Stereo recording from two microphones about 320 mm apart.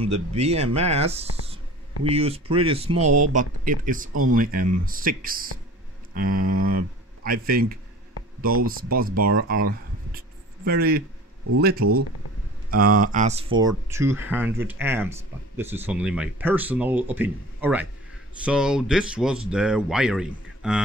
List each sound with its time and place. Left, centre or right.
0.0 s speech: centre
8.9 s speech: right
9.5 s a sound: right
11.8 s speech: right
13.6 s speech: centre